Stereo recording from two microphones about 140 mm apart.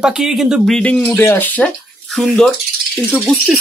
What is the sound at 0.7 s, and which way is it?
Speech, 10° left (ahead or behind).